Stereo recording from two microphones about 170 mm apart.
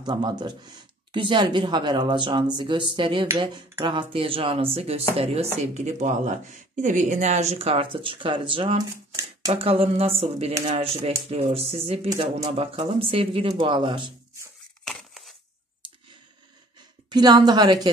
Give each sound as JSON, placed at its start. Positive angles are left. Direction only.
{"t": 0.0, "sound": "speech", "side_deg": -25}
{"t": 14.9, "sound": "crushing", "side_deg": 0}
{"t": 17.1, "sound": "speech", "side_deg": -25}